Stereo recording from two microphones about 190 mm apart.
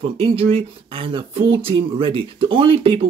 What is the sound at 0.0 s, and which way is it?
Speech, 30° right (ahead or behind).